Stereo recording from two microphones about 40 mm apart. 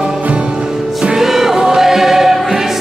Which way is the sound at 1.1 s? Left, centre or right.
Centre.